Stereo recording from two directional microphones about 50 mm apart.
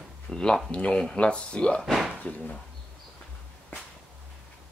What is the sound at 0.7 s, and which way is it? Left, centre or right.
Speech, left.